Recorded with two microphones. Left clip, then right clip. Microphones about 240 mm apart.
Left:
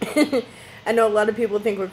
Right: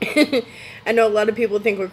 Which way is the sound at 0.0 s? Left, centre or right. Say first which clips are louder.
Right 3 dB; centre.